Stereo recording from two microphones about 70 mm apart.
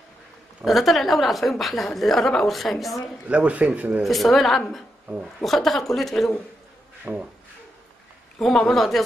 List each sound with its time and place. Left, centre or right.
0.7 s a woman's voice: centre
3.3 s speech: centre
4.0 s a woman's voice: centre
7.1 s speech: centre
8.4 s a woman's voice: centre